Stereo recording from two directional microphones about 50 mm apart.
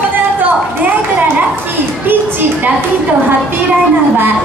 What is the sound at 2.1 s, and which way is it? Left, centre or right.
Children playing, right.